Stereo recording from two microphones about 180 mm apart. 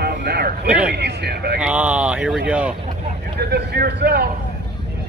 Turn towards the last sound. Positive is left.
turn(degrees=-65)  # may be behind; listen again after turning